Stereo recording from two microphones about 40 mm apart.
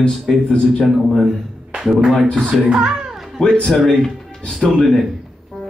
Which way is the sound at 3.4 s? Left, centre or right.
Left.